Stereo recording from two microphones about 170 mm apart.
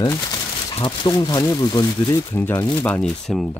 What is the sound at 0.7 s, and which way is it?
Speech, 25° left (ahead or behind).